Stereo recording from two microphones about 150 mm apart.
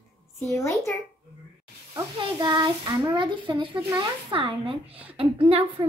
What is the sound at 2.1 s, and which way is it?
A child's voice, 30° right (ahead or behind).